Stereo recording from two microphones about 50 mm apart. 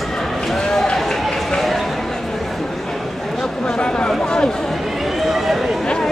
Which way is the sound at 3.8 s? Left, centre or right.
Left.